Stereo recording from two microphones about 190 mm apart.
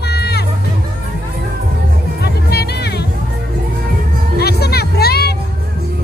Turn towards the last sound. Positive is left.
turn(degrees=55)  # may be behind; listen again after turning